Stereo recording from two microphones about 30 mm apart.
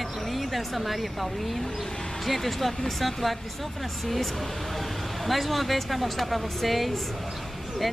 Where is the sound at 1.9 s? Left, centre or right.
Centre.